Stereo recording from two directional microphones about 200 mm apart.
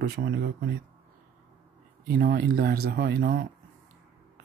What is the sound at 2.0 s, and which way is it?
Speech, 50° right (ahead or behind).